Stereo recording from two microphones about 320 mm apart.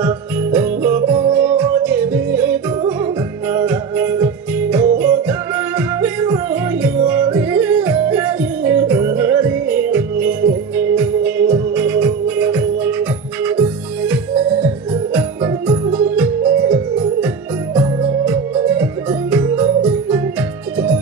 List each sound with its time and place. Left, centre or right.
0.0 s jingle bell: centre
5.8 s music: centre
15.1 s organ: centre
17.7 s music: centre